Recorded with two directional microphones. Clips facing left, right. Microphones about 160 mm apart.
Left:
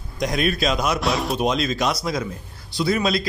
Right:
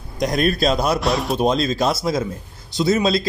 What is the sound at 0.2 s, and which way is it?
Speech, 40° right (ahead or behind).